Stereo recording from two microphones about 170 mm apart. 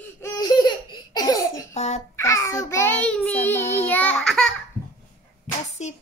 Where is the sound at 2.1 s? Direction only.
20° left (ahead or behind).